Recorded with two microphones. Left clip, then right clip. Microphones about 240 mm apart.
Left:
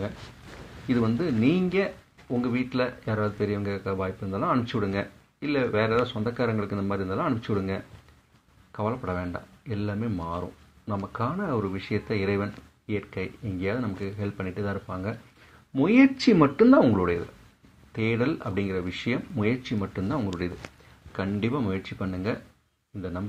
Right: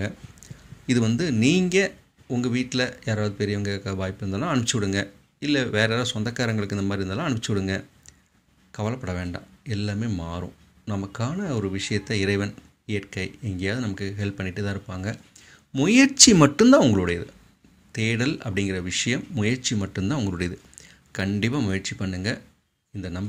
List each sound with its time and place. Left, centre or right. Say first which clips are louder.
0.8 s speech: right 2 dB; right